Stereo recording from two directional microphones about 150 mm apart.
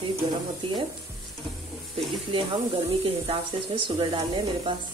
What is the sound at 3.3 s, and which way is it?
Speech, 35° right (ahead or behind).